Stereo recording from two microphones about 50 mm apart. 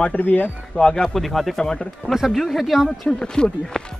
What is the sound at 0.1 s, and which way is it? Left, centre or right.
Speech, left.